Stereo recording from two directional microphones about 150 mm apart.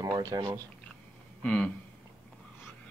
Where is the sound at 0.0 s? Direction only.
25° right (ahead or behind).